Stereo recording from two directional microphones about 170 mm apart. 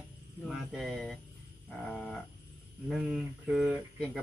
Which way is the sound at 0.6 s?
Centre (ahead or behind).